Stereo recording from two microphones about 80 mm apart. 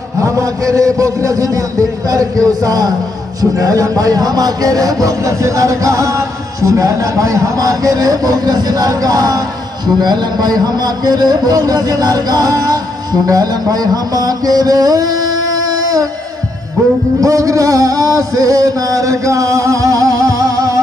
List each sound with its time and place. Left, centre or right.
0.2 s music: right
9.9 s a man's voice: right
17.2 s music: right